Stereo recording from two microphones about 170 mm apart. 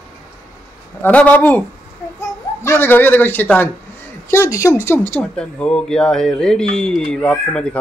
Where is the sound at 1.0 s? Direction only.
10° left (ahead or behind).